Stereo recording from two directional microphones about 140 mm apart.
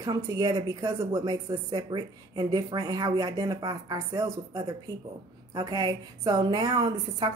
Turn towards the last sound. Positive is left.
turn(degrees=-30)  # may be behind; listen again after turning